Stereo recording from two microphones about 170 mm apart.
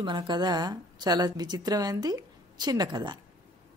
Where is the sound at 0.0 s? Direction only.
25° right (ahead or behind).